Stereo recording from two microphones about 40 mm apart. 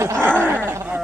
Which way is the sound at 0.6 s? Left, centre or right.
Right.